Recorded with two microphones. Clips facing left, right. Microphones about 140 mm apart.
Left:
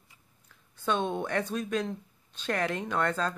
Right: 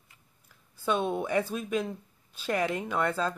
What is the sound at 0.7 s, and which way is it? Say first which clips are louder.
Speech: right 1 dB; 10° right (ahead or behind).